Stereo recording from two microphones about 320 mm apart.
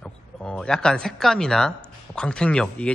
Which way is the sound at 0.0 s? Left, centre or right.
Centre.